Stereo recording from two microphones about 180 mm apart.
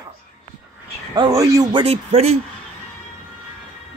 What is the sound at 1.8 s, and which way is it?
Speech, 35° right (ahead or behind).